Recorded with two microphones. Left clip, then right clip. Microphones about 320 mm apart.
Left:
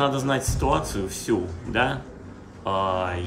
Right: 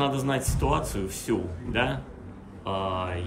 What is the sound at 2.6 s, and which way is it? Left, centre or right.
Mantra, centre.